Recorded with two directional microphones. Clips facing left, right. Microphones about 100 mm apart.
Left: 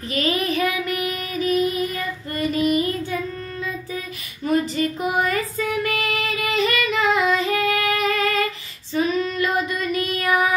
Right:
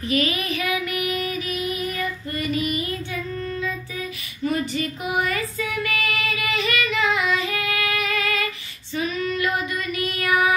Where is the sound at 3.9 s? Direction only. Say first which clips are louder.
Left 1 dB; 45° left (ahead or behind).